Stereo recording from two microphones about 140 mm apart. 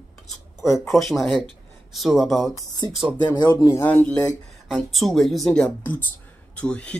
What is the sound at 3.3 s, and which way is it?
Speech, 25° left (ahead or behind).